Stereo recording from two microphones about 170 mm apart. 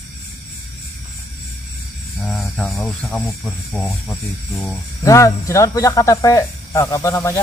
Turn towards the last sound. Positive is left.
turn(degrees=20)  # may be behind; listen again after turning